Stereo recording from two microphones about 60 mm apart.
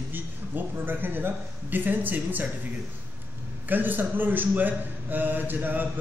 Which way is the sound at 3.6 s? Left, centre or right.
Right.